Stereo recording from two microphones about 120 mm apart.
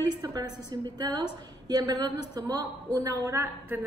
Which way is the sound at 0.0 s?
30° right (ahead or behind).